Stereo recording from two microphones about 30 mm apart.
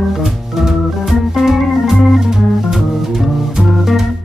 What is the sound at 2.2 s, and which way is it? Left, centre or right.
Music, centre.